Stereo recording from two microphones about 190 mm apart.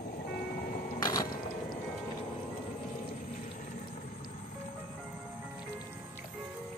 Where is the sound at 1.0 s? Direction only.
20° left (ahead or behind).